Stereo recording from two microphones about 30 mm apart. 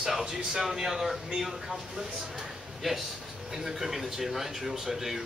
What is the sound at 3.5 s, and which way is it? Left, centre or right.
A man's voice, centre.